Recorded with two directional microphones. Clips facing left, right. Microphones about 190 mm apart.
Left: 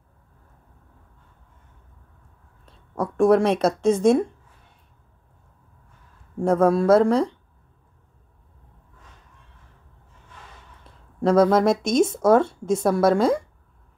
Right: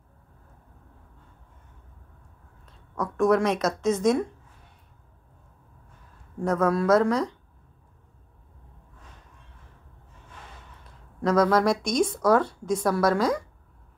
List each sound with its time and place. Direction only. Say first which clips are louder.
2.6 s speech: left 4 dB; 30° left (ahead or behind)
6.4 s speech: left 5 dB; 30° left (ahead or behind)
11.1 s speech: left 4 dB; 25° left (ahead or behind)